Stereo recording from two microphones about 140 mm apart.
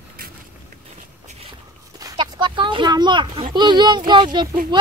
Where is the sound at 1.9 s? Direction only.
30° right (ahead or behind).